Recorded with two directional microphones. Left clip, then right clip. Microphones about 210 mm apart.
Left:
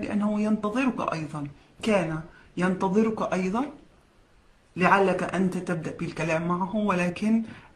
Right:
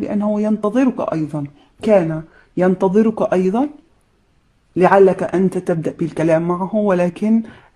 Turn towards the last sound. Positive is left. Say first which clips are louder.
# right 10 dB
turn(degrees=-40)  # may be behind; listen again after turning